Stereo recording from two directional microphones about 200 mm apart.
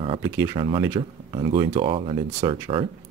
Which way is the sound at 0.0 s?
25° right (ahead or behind).